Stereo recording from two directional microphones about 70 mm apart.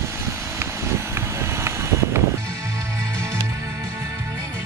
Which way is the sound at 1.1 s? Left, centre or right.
Right.